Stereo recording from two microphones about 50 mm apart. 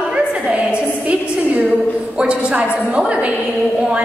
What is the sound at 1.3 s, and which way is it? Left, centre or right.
A woman's voice, right.